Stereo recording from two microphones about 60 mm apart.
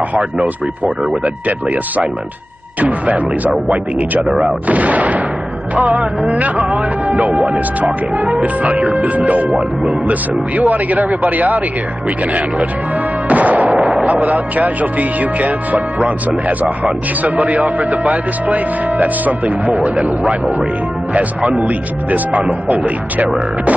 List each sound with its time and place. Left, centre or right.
0.1 s speech: centre
3.6 s speech: right
4.3 s speech: centre
4.6 s speech: right
6.3 s speech: right
9.5 s speech: centre
10.0 s speech: right
13.3 s music: right
14.0 s speech: right